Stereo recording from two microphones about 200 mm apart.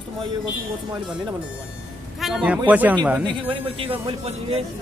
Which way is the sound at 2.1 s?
Centre (ahead or behind).